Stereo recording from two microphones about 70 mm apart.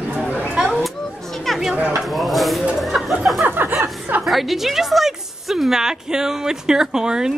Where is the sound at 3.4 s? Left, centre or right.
Right.